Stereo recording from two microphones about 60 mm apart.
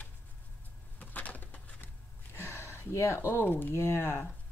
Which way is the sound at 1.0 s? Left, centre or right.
Left.